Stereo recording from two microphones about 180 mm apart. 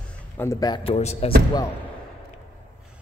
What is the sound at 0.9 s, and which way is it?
Speech, 35° left (ahead or behind).